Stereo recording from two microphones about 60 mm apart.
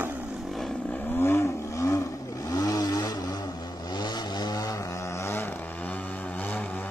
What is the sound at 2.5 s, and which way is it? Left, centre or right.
Vehicle, left.